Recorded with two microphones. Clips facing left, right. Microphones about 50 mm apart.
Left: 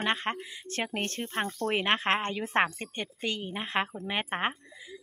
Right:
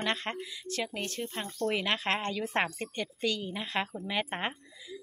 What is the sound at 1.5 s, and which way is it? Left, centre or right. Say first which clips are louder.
Speech: left 1 dB; left.